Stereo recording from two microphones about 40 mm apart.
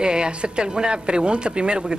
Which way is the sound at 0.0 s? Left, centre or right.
Right.